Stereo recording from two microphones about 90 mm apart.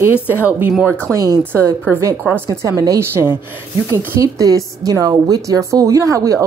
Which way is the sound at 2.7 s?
40° right (ahead or behind).